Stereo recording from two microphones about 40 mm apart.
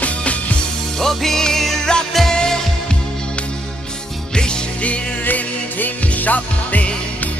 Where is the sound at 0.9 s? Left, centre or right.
Centre.